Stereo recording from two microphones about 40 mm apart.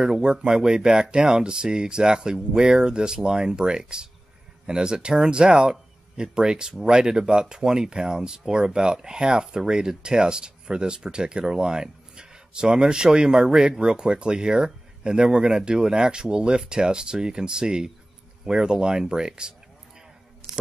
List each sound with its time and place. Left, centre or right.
0.0 s speech: centre